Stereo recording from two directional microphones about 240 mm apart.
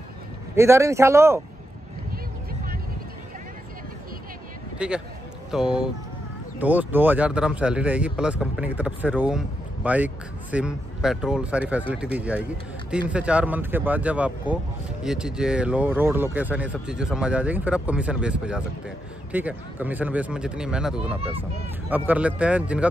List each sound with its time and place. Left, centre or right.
0.6 s a man's voice: centre
4.7 s speech: centre